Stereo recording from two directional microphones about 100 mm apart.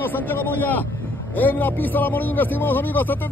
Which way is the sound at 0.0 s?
20° left (ahead or behind).